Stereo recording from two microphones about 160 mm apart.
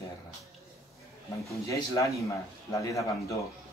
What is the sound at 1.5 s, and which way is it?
Speech, 20° left (ahead or behind).